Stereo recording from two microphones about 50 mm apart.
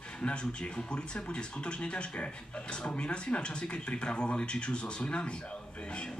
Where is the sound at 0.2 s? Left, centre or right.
Left.